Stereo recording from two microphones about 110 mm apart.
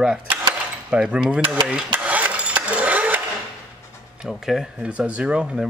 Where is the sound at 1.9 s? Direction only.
15° right (ahead or behind).